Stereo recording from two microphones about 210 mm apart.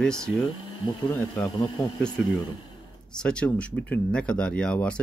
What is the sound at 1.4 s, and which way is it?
Speech, 25° left (ahead or behind).